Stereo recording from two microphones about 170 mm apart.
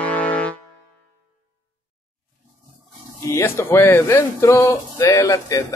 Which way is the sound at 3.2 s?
15° left (ahead or behind).